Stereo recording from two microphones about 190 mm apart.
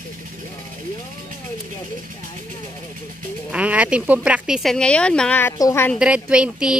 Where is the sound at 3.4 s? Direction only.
5° right (ahead or behind); by 6.0 s 15° left (ahead or behind).